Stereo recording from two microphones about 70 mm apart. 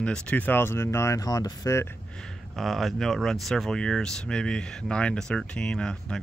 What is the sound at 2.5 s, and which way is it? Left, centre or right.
Speech, centre.